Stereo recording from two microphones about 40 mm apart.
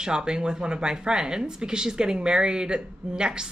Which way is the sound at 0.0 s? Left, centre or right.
Centre.